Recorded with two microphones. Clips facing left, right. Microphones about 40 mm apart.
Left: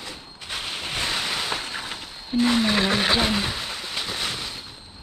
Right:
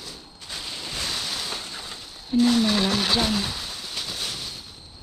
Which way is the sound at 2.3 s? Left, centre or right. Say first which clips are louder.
Right 1 dB; left.